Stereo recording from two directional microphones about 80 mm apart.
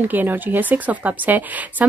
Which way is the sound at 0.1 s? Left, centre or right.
Right.